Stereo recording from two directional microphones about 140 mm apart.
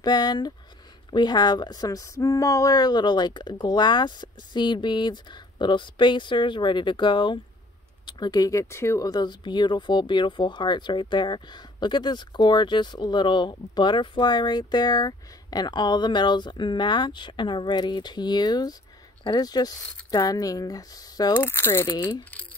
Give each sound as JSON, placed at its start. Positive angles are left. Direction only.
{"t": 0.0, "sound": "speech", "side_deg": 30}
{"t": 21.3, "sound": "speech", "side_deg": 15}